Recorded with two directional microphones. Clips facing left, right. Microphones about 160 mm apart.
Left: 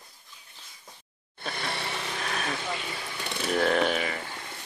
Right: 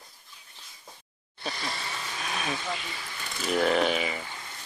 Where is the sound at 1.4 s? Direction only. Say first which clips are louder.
Left 1 dB; 60° left (ahead or behind).